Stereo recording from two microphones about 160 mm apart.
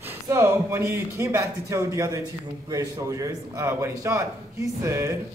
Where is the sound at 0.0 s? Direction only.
15° right (ahead or behind).